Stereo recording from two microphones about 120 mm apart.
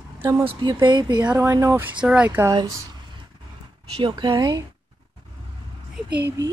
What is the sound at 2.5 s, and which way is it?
Speech, 30° right (ahead or behind).